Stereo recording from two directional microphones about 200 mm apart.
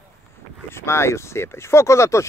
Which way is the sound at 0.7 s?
15° left (ahead or behind).